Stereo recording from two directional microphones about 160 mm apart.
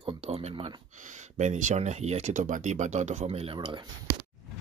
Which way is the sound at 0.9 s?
50° right (ahead or behind).